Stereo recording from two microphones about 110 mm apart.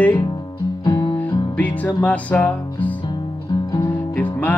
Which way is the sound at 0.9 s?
40° left (ahead or behind).